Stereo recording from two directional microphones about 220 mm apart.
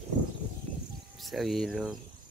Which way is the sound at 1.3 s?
Centre (ahead or behind).